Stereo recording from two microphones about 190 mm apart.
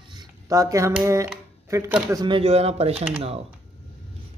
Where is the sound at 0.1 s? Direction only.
15° right (ahead or behind).